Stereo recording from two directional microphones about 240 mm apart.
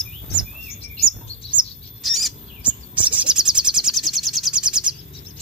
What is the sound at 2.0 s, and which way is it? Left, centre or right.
Bird, centre.